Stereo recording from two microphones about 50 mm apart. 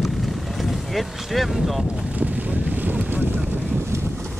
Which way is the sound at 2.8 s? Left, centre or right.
Right.